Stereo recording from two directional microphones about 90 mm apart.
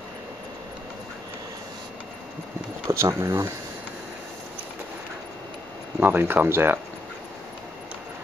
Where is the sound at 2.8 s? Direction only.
35° right (ahead or behind).